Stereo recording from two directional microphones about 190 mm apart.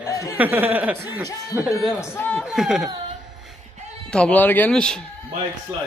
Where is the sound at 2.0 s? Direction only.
10° left (ahead or behind).